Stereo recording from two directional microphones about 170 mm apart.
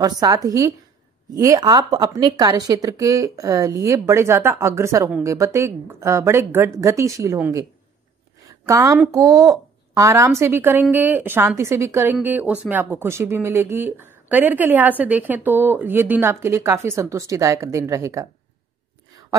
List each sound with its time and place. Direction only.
0.0 s a woman's voice: 20° right (ahead or behind)
8.4 s a sound: 20° right (ahead or behind)
9.1 s a woman's voice: 20° right (ahead or behind)